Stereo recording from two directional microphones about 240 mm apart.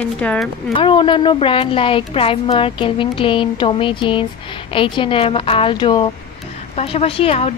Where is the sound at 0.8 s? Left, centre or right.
Centre.